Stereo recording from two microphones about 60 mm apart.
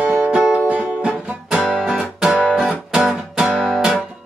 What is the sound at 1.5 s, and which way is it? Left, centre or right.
Music, centre.